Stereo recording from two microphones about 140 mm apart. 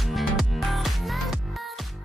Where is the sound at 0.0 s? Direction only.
Centre (ahead or behind).